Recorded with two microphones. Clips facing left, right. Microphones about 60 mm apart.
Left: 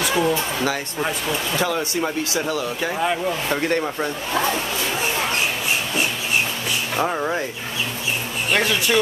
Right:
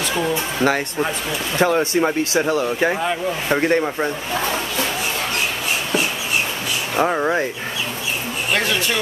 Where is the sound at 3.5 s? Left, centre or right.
Right.